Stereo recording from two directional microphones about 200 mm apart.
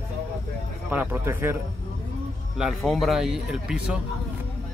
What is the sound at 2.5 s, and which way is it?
Speech, centre (ahead or behind).